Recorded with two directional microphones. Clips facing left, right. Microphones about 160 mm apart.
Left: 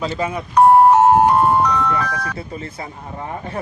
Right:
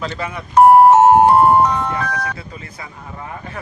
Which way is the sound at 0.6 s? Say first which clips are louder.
Right 2 dB; 30° right (ahead or behind).